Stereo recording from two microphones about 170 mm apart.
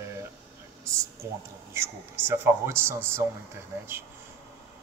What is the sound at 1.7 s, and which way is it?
A man's voice, 15° right (ahead or behind).